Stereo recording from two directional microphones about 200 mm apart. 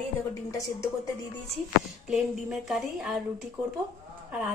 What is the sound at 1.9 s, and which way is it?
A woman's voice, centre (ahead or behind).